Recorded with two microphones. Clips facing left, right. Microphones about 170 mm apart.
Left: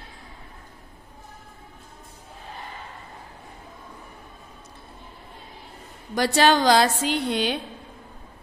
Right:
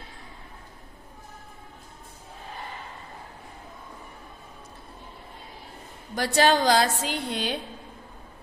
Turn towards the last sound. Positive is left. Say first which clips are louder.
# left 5 dB
turn(degrees=75)  # may be behind; listen again after turning